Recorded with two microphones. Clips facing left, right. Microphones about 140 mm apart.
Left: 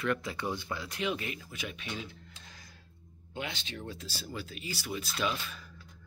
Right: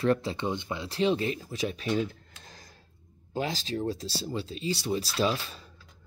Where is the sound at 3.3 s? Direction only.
35° right (ahead or behind).